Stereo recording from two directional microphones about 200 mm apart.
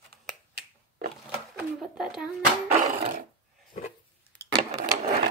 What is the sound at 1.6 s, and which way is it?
Speech, centre (ahead or behind).